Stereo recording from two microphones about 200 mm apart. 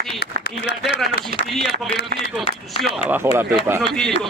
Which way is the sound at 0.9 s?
55° left (ahead or behind).